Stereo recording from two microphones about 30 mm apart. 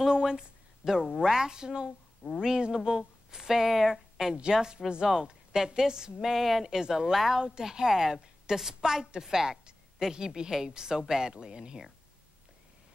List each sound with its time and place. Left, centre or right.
0.1 s a sound: right
1.2 s a woman's voice: right
4.6 s a woman's voice: right
6.2 s speech: centre
6.6 s a woman's voice: centre